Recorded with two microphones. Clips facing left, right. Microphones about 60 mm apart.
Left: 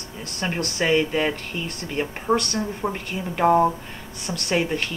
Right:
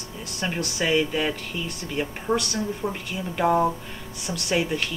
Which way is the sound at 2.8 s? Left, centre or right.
Left.